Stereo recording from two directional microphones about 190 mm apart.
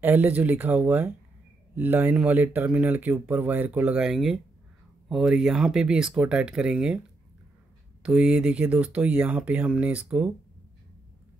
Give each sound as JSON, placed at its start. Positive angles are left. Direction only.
{"t": 0.0, "sound": "speech", "side_deg": -10}
{"t": 8.0, "sound": "speech", "side_deg": -5}